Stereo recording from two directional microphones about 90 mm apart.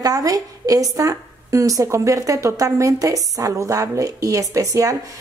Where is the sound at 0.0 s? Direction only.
40° right (ahead or behind).